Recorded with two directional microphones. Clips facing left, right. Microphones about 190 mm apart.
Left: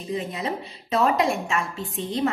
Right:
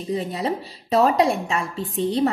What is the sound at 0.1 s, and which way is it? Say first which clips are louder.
A woman's voice: right 3 dB; 35° right (ahead or behind).